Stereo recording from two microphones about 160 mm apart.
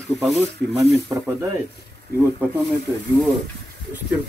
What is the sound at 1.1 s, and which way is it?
Speech, 20° right (ahead or behind).